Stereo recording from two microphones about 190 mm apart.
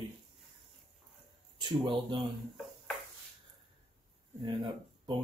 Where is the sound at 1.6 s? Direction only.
25° right (ahead or behind).